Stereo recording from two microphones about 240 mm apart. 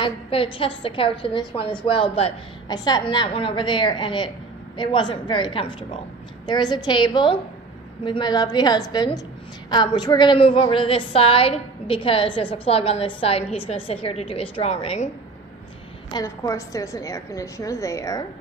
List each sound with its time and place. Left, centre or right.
0.0 s a woman's voice: left
16.1 s a woman's voice: centre